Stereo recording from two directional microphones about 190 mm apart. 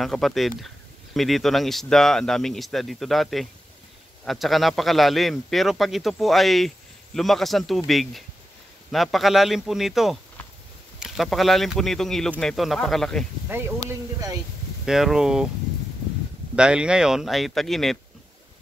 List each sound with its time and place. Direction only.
0.0 s a man's voice: centre (ahead or behind)
13.5 s speech: 10° right (ahead or behind)
14.9 s a man's voice: centre (ahead or behind)
16.5 s a man's voice: 5° right (ahead or behind)